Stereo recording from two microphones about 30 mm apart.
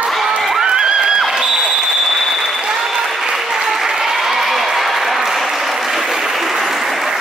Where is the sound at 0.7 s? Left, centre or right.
Right.